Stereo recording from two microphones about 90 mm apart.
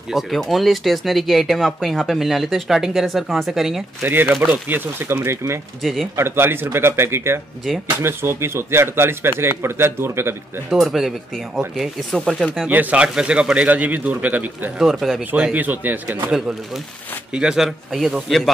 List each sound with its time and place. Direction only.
0.1 s speech: centre (ahead or behind)
4.0 s a man's voice: 20° right (ahead or behind)
5.8 s speech: centre (ahead or behind)
6.1 s a man's voice: 25° right (ahead or behind)
10.7 s speech: 5° right (ahead or behind)
12.6 s speech: 15° right (ahead or behind)
14.8 s speech: centre (ahead or behind)
15.3 s a man's voice: 15° right (ahead or behind)
16.3 s speech: 5° right (ahead or behind)